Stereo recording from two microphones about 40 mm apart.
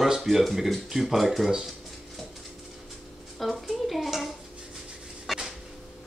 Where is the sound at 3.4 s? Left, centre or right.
Centre.